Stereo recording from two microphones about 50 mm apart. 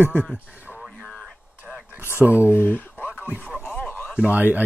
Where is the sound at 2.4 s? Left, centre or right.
Left.